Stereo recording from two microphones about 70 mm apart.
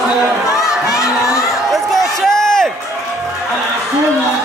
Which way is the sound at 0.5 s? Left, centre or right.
Centre.